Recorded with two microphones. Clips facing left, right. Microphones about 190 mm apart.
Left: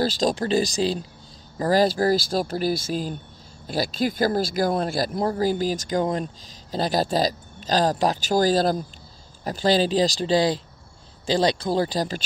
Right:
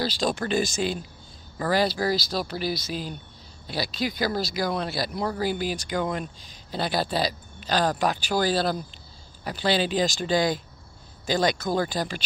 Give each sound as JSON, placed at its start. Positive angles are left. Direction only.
{"t": 0.0, "sound": "speech", "side_deg": 45}